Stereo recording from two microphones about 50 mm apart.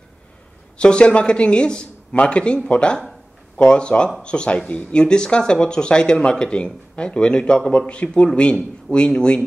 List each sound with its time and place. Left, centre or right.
0.7 s speech: centre